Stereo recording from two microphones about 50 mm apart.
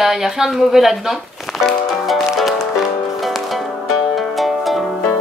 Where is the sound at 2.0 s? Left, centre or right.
Centre.